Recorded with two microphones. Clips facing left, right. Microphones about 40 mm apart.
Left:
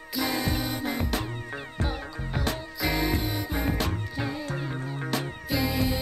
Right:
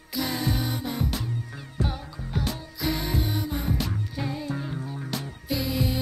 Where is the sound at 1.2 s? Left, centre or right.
Left.